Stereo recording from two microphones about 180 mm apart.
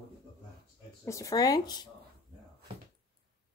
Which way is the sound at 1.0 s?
20° left (ahead or behind).